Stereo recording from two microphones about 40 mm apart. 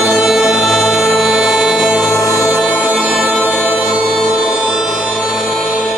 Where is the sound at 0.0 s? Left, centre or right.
Centre.